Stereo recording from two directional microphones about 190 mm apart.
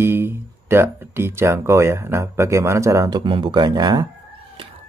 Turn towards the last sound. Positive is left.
turn(degrees=-20)  # may be behind; listen again after turning